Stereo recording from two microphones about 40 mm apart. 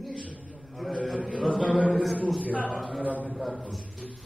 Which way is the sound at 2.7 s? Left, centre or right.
Centre.